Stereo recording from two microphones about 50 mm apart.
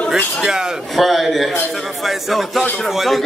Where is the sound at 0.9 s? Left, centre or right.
Centre.